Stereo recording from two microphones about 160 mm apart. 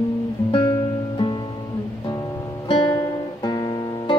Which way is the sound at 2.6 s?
35° left (ahead or behind).